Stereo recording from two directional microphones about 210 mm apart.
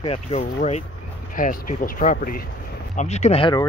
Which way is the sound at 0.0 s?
30° left (ahead or behind).